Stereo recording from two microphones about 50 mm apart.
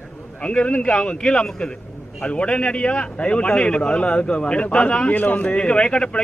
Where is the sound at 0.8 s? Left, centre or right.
Centre.